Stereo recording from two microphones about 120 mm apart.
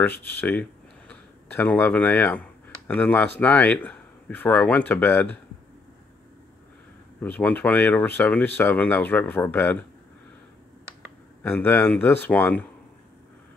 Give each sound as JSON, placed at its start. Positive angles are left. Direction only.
{"t": 0.0, "sound": "speech", "side_deg": 15}
{"t": 7.2, "sound": "speech", "side_deg": 15}
{"t": 11.4, "sound": "speech", "side_deg": 15}